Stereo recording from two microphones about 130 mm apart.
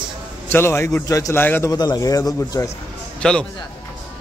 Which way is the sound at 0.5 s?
20° left (ahead or behind).